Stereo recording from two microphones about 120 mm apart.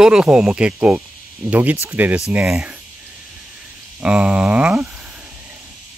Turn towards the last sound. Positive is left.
turn(degrees=-10)  # may be behind; listen again after turning